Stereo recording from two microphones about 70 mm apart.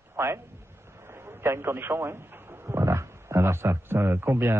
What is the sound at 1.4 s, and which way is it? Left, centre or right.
A man's voice, right.